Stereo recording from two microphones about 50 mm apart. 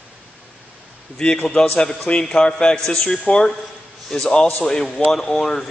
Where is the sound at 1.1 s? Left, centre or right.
Centre.